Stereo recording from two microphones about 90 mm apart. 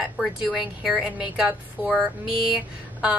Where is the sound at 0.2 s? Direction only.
5° right (ahead or behind).